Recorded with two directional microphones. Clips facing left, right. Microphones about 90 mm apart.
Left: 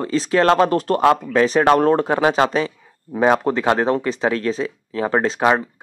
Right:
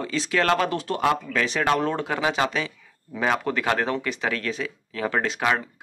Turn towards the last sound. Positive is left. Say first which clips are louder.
# left 7 dB
turn(degrees=30)  # may be behind; listen again after turning